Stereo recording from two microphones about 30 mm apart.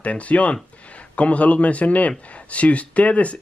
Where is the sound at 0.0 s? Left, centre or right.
Left.